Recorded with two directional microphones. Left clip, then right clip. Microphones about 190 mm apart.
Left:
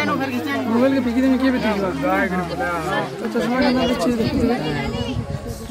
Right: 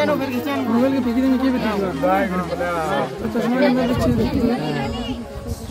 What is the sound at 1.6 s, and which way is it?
Speech, 45° right (ahead or behind).